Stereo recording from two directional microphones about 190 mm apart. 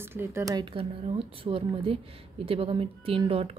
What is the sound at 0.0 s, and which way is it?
Speech, 10° right (ahead or behind).